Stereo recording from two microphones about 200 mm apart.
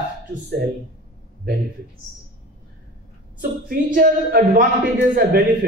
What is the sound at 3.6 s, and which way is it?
A man's voice, 45° right (ahead or behind).